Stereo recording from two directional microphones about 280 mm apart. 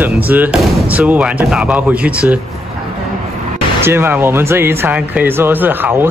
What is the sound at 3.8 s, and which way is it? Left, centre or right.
Speech, centre.